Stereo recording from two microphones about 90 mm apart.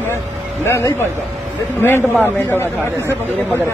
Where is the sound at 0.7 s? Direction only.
30° left (ahead or behind).